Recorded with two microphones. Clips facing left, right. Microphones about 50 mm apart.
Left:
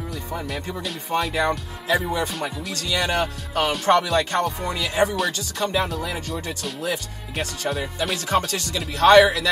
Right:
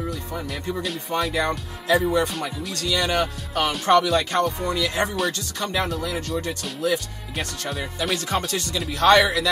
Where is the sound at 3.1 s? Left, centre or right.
Left.